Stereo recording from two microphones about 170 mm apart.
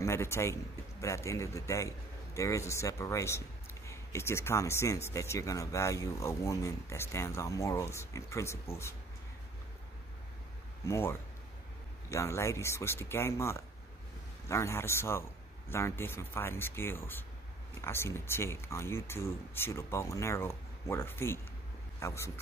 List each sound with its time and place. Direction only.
0.0 s a man's voice: 15° left (ahead or behind)
10.9 s a man's voice: 15° left (ahead or behind)